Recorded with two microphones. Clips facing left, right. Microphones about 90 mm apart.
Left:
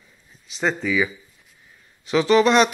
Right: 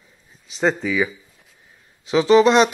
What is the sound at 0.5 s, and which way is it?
Speech, 30° right (ahead or behind).